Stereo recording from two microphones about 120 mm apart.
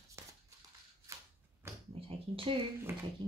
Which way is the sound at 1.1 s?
25° right (ahead or behind).